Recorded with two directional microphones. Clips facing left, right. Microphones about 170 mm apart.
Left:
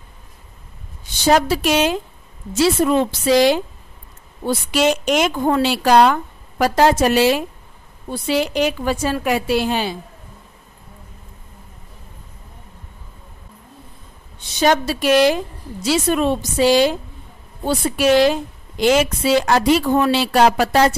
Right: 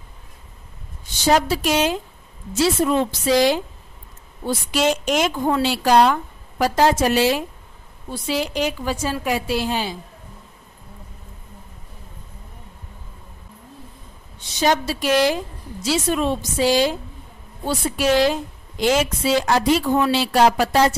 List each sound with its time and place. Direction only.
1.3 s a woman's voice: 70° left (ahead or behind)
14.6 s a woman's voice: 60° left (ahead or behind)